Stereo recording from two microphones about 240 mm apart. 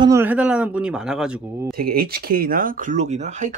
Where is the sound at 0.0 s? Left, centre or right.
Centre.